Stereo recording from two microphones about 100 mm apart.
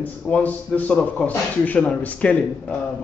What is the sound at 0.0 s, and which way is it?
A man's voice, 15° left (ahead or behind).